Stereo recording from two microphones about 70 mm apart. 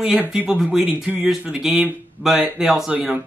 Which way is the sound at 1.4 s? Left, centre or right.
Centre.